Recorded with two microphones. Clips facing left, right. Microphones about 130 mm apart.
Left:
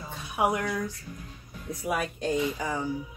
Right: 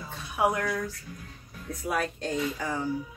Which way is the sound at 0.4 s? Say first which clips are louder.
Even; 15° left (ahead or behind).